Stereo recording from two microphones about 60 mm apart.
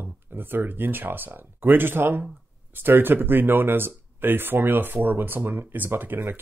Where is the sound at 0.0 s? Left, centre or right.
Right.